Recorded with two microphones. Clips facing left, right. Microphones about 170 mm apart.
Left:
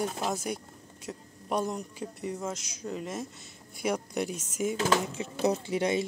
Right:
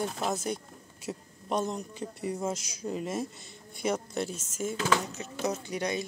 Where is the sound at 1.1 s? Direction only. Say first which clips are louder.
Right 3 dB; 10° right (ahead or behind).